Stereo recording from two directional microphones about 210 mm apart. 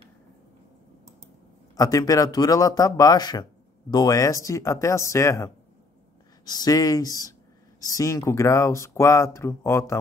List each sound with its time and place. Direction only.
1.8 s speech: 15° left (ahead or behind)